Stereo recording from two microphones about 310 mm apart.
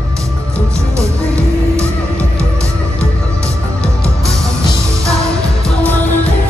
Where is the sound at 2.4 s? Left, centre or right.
Centre.